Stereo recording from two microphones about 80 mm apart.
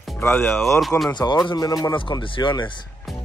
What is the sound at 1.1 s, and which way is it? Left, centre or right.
Speech, left.